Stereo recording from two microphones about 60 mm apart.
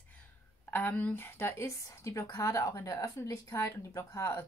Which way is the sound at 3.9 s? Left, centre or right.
Left.